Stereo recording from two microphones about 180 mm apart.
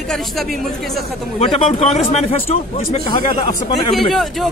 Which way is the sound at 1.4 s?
30° left (ahead or behind).